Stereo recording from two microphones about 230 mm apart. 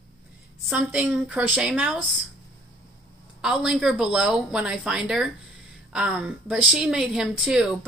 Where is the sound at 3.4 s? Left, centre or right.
Centre.